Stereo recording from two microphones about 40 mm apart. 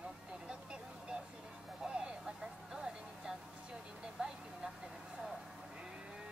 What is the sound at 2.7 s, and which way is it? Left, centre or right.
Music, centre.